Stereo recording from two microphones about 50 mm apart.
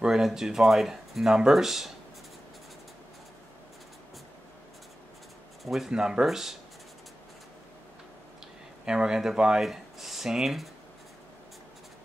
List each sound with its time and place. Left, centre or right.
0.0 s speech: centre
5.6 s speech: centre
5.9 s speech: centre
8.8 s speech: centre